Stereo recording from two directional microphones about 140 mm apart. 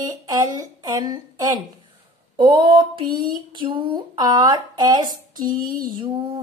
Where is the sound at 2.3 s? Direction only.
35° right (ahead or behind).